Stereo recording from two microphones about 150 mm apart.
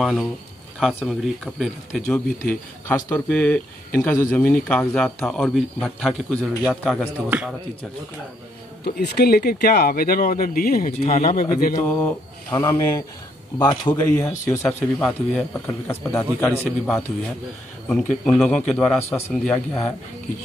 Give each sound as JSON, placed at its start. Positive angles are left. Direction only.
{"t": 0.0, "sound": "a man's voice", "side_deg": 0}
{"t": 2.0, "sound": "a man's voice", "side_deg": 10}
{"t": 7.2, "sound": "speech", "side_deg": -10}
{"t": 8.8, "sound": "speech", "side_deg": 90}
{"t": 10.9, "sound": "speech", "side_deg": 45}
{"t": 11.2, "sound": "a man's voice", "side_deg": 75}
{"t": 11.8, "sound": "speech", "side_deg": 10}
{"t": 13.6, "sound": "speech", "side_deg": 30}
{"t": 13.9, "sound": "a man's voice", "side_deg": 15}